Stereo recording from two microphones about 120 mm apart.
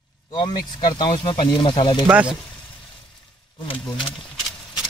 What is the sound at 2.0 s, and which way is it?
Speech, 10° right (ahead or behind).